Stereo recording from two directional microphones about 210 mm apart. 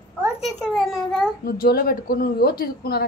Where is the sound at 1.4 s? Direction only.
45° left (ahead or behind).